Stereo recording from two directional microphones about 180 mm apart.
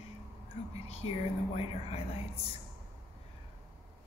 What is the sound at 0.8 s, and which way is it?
Speech, 35° left (ahead or behind).